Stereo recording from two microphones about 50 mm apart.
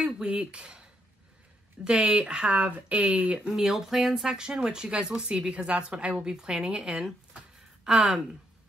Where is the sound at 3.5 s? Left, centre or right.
Centre.